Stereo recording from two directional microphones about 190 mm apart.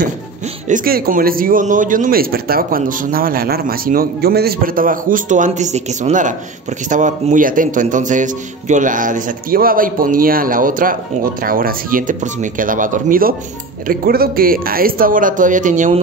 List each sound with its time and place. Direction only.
0.7 s a man's voice: 45° right (ahead or behind)